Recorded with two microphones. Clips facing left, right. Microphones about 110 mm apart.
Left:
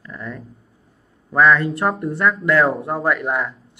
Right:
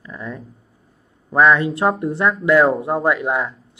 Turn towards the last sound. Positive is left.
turn(degrees=-10)  # may be behind; listen again after turning